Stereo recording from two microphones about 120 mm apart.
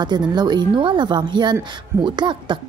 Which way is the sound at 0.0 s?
35° right (ahead or behind).